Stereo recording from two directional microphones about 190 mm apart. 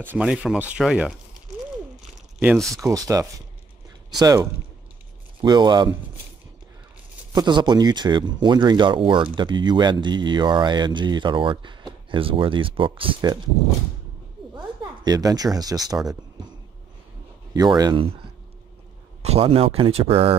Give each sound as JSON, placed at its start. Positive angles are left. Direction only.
{"t": 0.0, "sound": "speech", "side_deg": -10}
{"t": 2.5, "sound": "speech", "side_deg": 0}
{"t": 2.8, "sound": "speech", "side_deg": -15}
{"t": 7.3, "sound": "speech", "side_deg": -25}
{"t": 15.0, "sound": "speech", "side_deg": -20}
{"t": 17.6, "sound": "speech", "side_deg": -20}
{"t": 19.2, "sound": "speech", "side_deg": -30}